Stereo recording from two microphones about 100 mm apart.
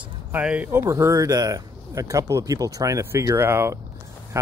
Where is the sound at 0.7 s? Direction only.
25° right (ahead or behind).